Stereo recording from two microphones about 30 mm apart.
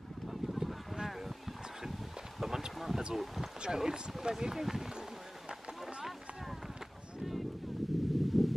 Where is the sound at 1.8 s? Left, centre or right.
Centre.